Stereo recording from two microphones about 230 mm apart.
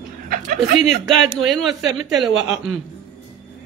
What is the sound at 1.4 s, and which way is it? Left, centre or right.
Speech, centre.